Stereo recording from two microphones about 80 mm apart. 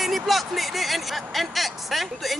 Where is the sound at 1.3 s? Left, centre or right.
Centre.